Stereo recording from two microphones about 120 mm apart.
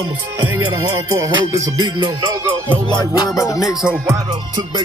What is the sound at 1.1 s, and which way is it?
Music, 30° right (ahead or behind).